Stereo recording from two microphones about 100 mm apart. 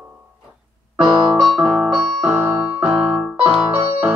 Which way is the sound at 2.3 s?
15° right (ahead or behind).